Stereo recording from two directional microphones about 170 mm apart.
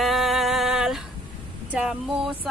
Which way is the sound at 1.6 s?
5° right (ahead or behind).